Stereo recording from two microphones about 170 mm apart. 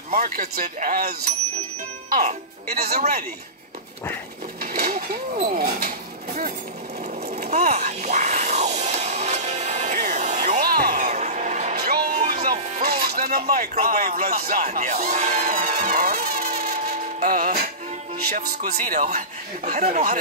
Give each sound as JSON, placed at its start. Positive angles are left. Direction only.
{"t": 0.1, "sound": "speech", "side_deg": -60}
{"t": 4.6, "sound": "a sound", "side_deg": -60}
{"t": 5.6, "sound": "speech", "side_deg": -55}
{"t": 7.2, "sound": "a sound", "side_deg": -45}
{"t": 10.6, "sound": "music", "side_deg": -60}
{"t": 11.7, "sound": "music", "side_deg": -65}
{"t": 12.1, "sound": "music", "side_deg": -40}
{"t": 12.8, "sound": "speech", "side_deg": -60}